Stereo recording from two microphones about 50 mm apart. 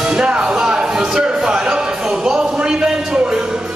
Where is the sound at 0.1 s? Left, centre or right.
Centre.